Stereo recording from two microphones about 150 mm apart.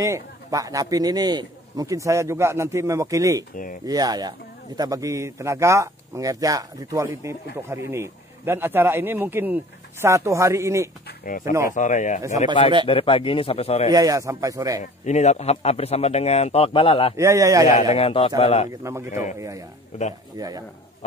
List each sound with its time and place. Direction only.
0.0 s a man's voice: 20° right (ahead or behind)
11.1 s speech: 65° left (ahead or behind)
11.7 s speech: 55° left (ahead or behind)
12.8 s a man's voice: 35° left (ahead or behind)
13.8 s speech: 25° right (ahead or behind)
14.8 s speech: 50° left (ahead or behind)
17.2 s speech: 20° right (ahead or behind)
17.9 s a man's voice: 40° left (ahead or behind)
18.7 s speech: 20° right (ahead or behind)